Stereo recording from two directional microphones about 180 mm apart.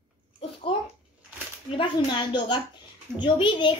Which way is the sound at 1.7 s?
25° left (ahead or behind).